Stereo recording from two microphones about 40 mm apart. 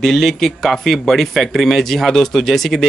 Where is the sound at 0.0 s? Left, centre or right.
Centre.